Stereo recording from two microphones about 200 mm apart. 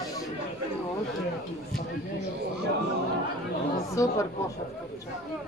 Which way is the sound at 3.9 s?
15° left (ahead or behind).